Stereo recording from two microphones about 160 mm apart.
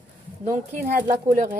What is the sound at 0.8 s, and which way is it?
Speech, 55° right (ahead or behind).